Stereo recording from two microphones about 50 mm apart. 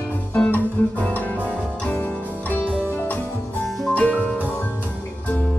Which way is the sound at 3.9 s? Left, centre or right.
Left.